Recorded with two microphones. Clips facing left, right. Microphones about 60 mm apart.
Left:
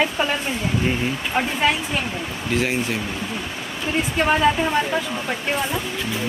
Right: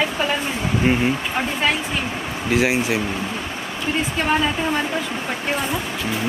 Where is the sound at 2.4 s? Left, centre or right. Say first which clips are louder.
Right 4 dB; centre.